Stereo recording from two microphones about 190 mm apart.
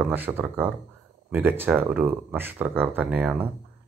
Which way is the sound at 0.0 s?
10° right (ahead or behind).